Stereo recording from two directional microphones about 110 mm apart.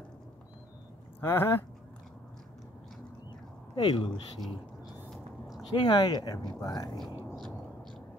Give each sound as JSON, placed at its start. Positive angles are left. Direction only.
{"t": 1.2, "sound": "speech", "side_deg": 20}
{"t": 3.7, "sound": "speech", "side_deg": 45}
{"t": 4.4, "sound": "a sound", "side_deg": 0}
{"t": 5.8, "sound": "speech", "side_deg": 40}